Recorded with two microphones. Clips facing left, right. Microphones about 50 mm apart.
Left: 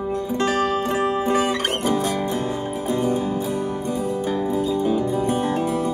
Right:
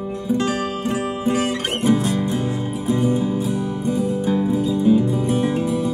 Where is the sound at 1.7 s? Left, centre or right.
Right.